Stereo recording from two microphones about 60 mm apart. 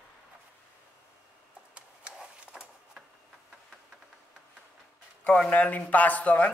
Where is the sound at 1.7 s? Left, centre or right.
Centre.